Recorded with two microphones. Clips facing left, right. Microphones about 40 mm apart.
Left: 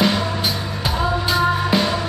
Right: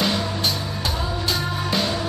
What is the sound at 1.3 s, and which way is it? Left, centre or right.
Music, centre.